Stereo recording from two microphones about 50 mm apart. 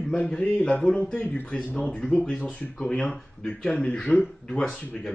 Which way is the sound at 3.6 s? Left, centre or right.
Centre.